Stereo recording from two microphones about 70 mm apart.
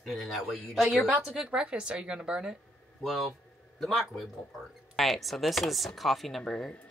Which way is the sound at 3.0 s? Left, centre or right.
Centre.